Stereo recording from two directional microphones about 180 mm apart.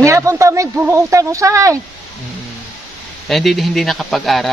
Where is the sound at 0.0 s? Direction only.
15° right (ahead or behind).